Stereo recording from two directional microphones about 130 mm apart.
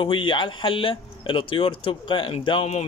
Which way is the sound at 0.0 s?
40° left (ahead or behind).